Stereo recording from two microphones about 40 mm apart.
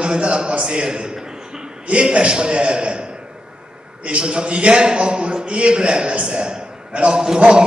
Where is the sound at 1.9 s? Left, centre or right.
Right.